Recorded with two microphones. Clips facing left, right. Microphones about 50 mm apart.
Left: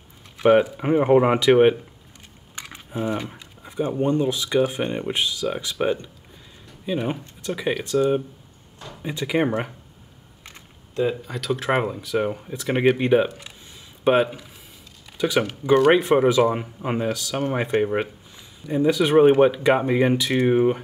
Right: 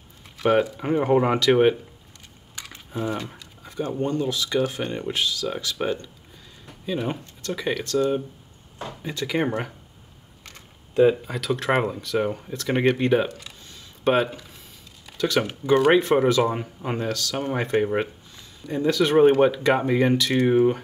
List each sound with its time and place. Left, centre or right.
0.4 s speech: centre
11.2 s speech: centre
13.4 s a sound: centre
15.1 s speech: centre